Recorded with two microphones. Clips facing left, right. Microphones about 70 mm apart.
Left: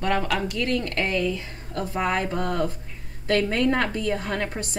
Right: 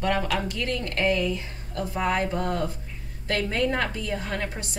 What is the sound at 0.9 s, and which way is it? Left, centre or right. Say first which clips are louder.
A woman's voice: even; left.